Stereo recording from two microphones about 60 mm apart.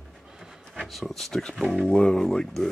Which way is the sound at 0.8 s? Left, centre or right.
Centre.